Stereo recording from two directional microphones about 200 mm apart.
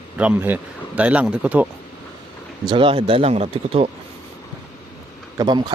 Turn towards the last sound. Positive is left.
turn(degrees=-20)  # may be behind; listen again after turning